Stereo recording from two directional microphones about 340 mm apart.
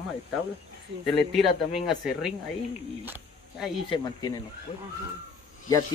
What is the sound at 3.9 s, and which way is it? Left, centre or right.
Speech, centre.